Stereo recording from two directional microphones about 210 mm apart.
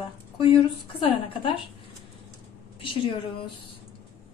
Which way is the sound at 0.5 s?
25° left (ahead or behind).